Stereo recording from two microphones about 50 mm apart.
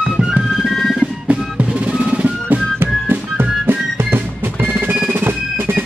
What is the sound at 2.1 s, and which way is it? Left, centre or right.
Music, right.